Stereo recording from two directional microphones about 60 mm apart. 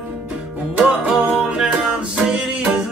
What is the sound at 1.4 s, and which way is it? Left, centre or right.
Music, centre.